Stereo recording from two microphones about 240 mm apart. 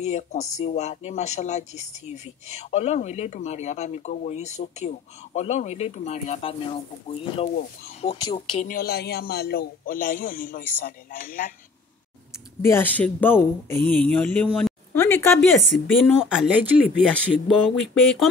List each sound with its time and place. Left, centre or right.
0.0 s speech: left
8.6 s a man's voice: left
12.6 s speech: centre
16.0 s speech: centre